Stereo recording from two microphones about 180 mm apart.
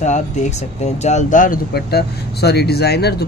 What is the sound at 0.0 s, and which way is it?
Speech, 40° left (ahead or behind).